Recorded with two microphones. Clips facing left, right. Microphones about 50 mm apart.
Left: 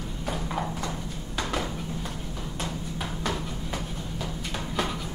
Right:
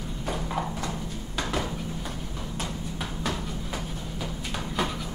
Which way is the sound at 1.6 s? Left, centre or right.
Centre.